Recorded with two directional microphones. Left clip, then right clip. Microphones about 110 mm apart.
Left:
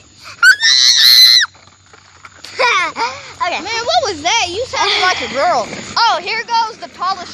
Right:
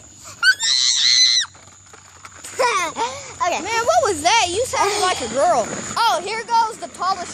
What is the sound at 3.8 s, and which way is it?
Speech, 15° right (ahead or behind).